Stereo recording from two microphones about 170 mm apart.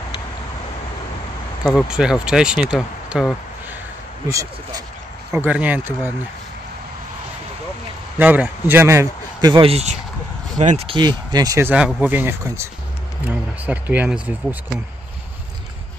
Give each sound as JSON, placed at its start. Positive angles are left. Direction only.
{"t": 1.7, "sound": "speech", "side_deg": 0}
{"t": 4.3, "sound": "speech", "side_deg": -20}
{"t": 8.2, "sound": "speech", "side_deg": -10}
{"t": 10.9, "sound": "speech", "side_deg": -25}
{"t": 11.7, "sound": "speech", "side_deg": -10}